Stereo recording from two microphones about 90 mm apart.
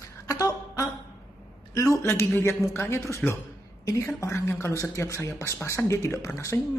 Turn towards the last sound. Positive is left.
turn(degrees=30)  # may be behind; listen again after turning